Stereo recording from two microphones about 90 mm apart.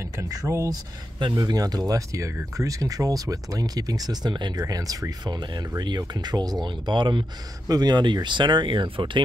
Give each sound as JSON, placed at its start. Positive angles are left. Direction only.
{"t": 0.2, "sound": "speech", "side_deg": -35}
{"t": 7.6, "sound": "speech", "side_deg": -45}